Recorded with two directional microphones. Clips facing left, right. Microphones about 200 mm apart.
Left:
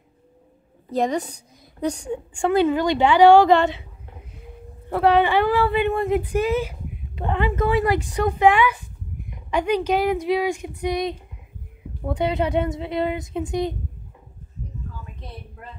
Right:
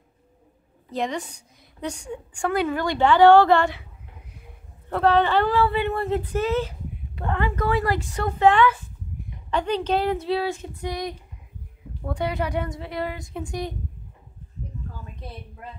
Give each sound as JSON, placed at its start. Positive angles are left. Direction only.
{"t": 0.9, "sound": "a woman's voice", "side_deg": 40}
{"t": 4.8, "sound": "a woman's voice", "side_deg": 10}